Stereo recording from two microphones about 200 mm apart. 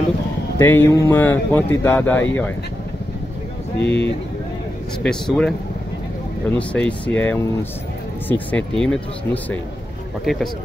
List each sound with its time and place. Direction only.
0.6 s speech: 10° left (ahead or behind)
3.8 s speech: 60° left (ahead or behind)
5.0 s speech: 5° left (ahead or behind)
6.7 s speech: 5° left (ahead or behind)